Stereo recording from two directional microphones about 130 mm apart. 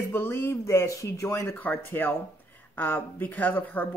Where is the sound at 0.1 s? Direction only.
15° left (ahead or behind).